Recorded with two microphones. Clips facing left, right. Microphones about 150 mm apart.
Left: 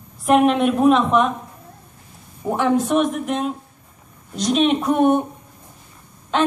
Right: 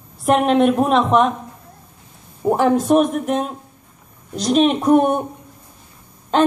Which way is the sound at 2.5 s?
40° right (ahead or behind).